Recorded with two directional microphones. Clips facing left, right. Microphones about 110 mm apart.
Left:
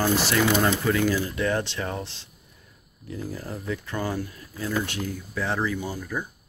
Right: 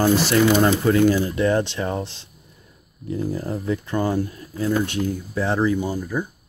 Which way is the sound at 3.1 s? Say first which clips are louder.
Right 8 dB; 30° right (ahead or behind).